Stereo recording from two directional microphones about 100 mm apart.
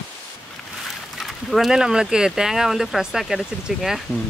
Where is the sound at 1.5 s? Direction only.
5° right (ahead or behind).